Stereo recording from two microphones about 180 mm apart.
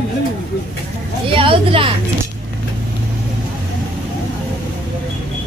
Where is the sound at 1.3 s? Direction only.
30° right (ahead or behind).